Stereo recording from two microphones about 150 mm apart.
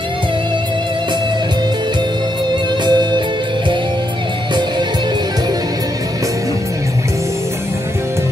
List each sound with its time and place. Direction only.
2.8 s music: 30° right (ahead or behind)